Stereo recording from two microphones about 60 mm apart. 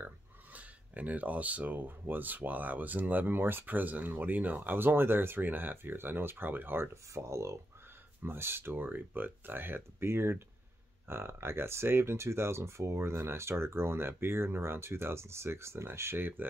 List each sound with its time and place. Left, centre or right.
0.5 s speech: right
7.2 s speech: right
8.2 s speech: right